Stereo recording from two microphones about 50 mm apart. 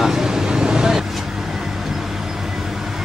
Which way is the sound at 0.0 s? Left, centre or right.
Centre.